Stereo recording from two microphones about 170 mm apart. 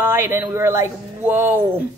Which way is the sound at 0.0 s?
15° right (ahead or behind).